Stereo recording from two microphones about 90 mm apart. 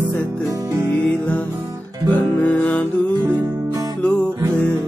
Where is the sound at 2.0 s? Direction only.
15° left (ahead or behind).